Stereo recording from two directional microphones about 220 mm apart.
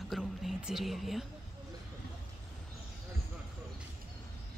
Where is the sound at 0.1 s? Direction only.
Centre (ahead or behind).